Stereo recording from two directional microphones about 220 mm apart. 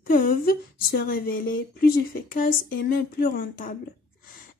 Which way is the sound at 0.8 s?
40° left (ahead or behind).